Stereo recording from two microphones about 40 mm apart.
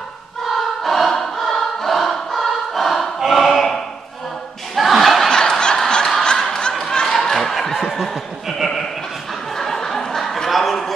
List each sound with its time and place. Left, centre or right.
0.5 s choir: centre
3.2 s choir: centre
4.7 s snicker: centre
5.3 s snicker: centre
6.8 s a sound: centre
9.6 s a sound: centre